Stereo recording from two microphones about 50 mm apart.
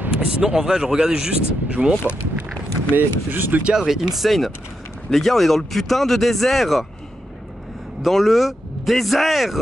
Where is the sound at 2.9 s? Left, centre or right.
Right.